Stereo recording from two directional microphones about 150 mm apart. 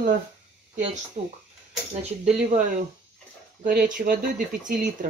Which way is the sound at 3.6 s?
65° right (ahead or behind).